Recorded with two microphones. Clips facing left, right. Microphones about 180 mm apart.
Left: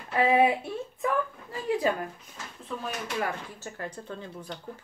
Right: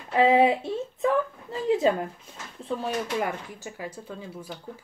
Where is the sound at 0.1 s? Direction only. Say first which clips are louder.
Right 3 dB; 20° right (ahead or behind).